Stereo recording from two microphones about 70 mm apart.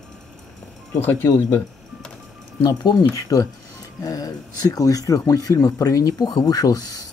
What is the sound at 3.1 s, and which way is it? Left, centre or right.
Speech, left.